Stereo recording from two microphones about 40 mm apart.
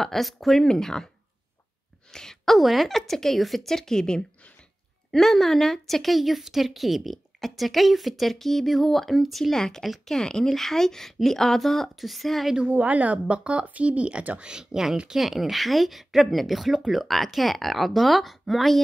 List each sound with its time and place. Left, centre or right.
0.0 s a woman's voice: centre
0.6 s speech: centre
2.1 s a sound: centre
2.4 s a woman's voice: centre
3.7 s a woman's voice: centre
9.6 s a woman's voice: centre
12.6 s speech: right
14.4 s a woman's voice: centre